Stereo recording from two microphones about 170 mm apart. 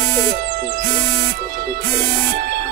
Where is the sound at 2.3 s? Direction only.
60° right (ahead or behind).